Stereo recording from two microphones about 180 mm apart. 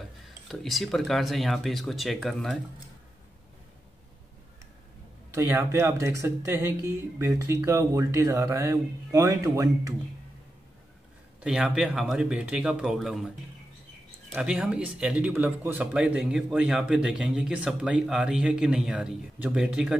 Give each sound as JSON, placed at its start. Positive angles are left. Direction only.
{"t": 0.5, "sound": "speech", "side_deg": 0}
{"t": 5.3, "sound": "speech", "side_deg": -15}
{"t": 11.4, "sound": "speech", "side_deg": -5}
{"t": 14.3, "sound": "speech", "side_deg": -5}